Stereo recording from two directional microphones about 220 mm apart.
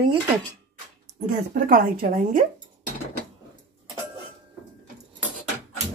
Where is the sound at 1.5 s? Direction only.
40° right (ahead or behind).